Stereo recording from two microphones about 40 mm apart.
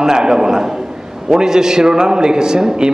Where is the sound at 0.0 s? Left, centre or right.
Centre.